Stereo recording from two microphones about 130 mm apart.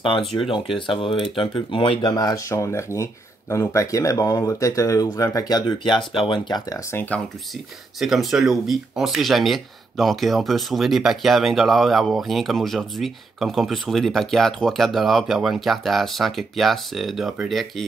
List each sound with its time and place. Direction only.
0.7 s speech: 40° left (ahead or behind)
6.9 s speech: 15° left (ahead or behind)
8.0 s speech: centre (ahead or behind)